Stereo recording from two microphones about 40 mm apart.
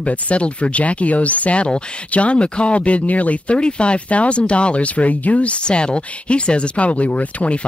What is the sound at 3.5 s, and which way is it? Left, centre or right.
Speech, left.